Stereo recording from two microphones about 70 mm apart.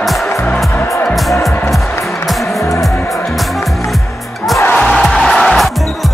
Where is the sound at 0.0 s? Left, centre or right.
Centre.